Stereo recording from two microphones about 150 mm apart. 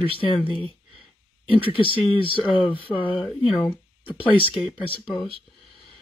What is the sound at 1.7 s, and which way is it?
Speech, 35° left (ahead or behind).